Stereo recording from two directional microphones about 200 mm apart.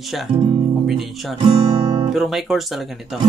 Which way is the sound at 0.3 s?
25° right (ahead or behind).